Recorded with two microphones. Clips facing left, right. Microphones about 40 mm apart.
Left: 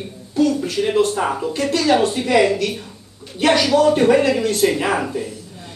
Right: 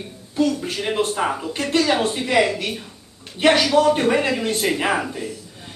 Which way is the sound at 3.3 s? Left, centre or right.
Centre.